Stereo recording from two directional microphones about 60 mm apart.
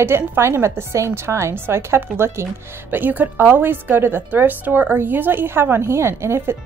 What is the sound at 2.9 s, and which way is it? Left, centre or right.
A woman's voice, right.